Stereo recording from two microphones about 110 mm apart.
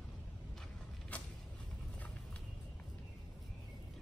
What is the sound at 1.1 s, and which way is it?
Vehicle, 15° left (ahead or behind).